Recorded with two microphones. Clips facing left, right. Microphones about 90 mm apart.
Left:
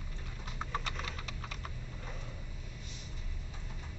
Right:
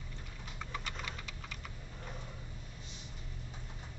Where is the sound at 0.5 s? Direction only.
45° left (ahead or behind).